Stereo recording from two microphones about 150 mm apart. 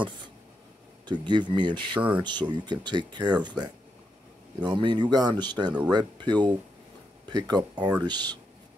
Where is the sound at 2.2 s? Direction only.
30° right (ahead or behind).